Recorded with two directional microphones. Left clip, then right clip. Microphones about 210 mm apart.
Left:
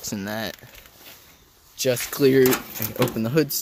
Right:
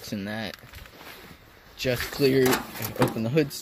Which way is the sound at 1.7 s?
30° left (ahead or behind).